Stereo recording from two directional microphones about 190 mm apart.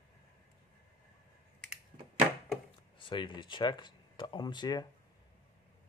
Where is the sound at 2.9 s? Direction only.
25° left (ahead or behind).